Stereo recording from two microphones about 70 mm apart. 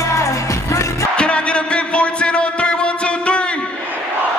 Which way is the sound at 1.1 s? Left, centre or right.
Centre.